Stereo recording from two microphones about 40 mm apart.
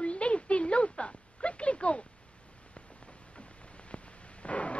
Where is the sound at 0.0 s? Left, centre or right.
Left.